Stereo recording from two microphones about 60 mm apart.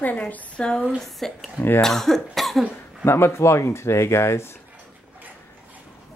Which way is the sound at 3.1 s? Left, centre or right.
Left.